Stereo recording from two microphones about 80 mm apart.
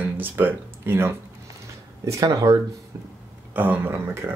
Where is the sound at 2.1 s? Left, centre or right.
Right.